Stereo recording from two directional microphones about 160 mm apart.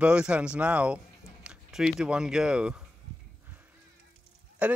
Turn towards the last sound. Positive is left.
turn(degrees=-10)  # may be behind; listen again after turning